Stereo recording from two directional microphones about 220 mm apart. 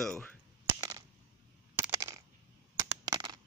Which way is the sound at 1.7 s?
15° right (ahead or behind).